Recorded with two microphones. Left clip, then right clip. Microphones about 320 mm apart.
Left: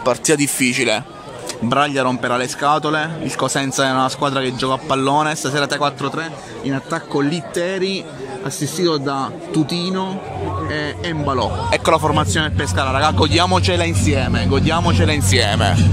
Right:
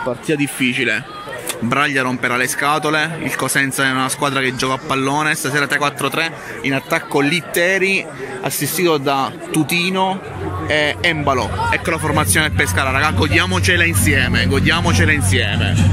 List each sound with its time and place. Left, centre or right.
0.3 s speech: centre
11.7 s speech: centre
12.0 s speech: centre
15.1 s speech: centre